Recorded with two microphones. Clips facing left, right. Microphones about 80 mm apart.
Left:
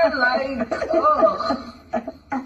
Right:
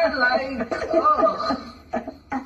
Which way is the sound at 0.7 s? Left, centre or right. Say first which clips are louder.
Left 1 dB; left.